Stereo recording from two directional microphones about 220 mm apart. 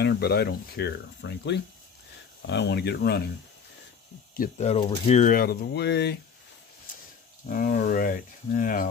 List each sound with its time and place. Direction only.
0.0 s speech: 50° left (ahead or behind)
4.4 s speech: 30° left (ahead or behind); by 6.1 s 50° left (ahead or behind)
7.4 s speech: 40° left (ahead or behind)